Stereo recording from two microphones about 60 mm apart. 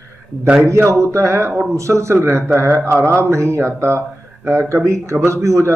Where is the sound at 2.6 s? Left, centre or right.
Right.